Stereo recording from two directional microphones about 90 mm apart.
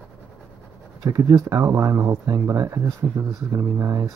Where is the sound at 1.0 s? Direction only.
40° right (ahead or behind).